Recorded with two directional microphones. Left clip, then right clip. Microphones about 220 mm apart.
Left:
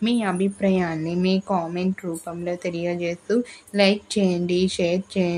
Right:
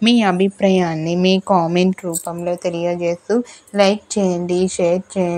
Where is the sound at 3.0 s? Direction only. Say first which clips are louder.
Right 5 dB; 10° right (ahead or behind).